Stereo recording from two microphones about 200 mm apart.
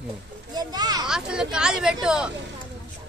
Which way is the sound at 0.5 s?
20° right (ahead or behind).